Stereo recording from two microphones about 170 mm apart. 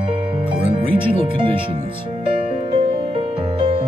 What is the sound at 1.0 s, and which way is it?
Speech, 30° right (ahead or behind).